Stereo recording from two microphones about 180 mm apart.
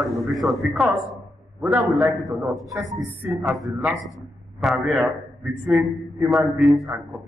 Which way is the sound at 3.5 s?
Centre (ahead or behind).